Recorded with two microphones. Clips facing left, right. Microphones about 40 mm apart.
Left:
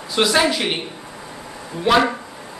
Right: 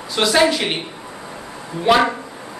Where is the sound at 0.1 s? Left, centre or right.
Centre.